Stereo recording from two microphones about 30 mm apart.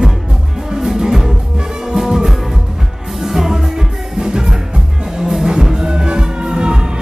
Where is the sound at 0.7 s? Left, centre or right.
Centre.